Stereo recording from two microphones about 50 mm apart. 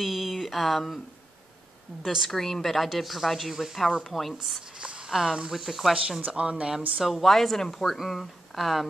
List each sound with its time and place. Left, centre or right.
0.0 s a sound: centre
2.2 s speech: centre
4.7 s a sound: centre
5.5 s speech: centre
6.2 s speech: right
7.0 s speech: centre